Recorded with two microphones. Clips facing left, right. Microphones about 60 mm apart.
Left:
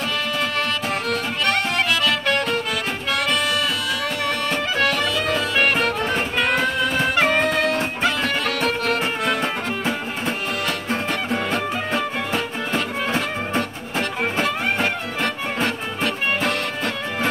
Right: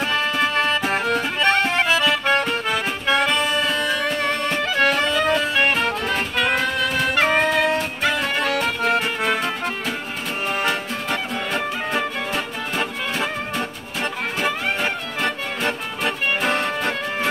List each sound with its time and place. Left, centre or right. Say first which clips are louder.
0.1 s music: right 4 dB; right
4.5 s music: right 2 dB; right
6.0 s music: left 1 dB; centre
6.4 s music: even; centre
6.8 s music: left 1 dB; centre
7.2 s music: right 1 dB; centre
10.6 s music: even; right
16.0 s music: left 1 dB; right